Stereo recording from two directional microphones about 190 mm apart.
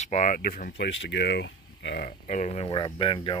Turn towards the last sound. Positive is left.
turn(degrees=30)  # may be behind; listen again after turning